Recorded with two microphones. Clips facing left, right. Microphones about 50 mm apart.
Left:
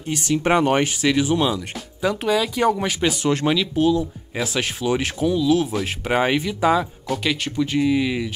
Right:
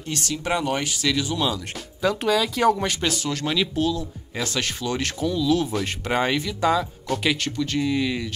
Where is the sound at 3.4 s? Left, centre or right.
Left.